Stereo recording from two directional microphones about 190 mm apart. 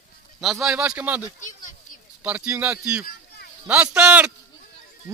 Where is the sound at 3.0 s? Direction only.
55° left (ahead or behind).